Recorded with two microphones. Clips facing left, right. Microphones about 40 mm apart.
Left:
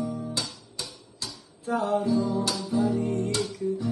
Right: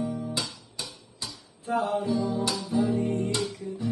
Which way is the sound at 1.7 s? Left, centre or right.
Right.